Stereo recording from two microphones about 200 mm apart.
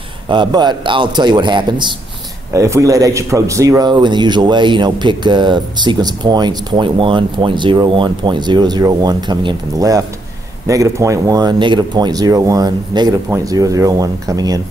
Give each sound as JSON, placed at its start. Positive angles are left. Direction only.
{"t": 0.3, "sound": "a man's voice", "side_deg": -20}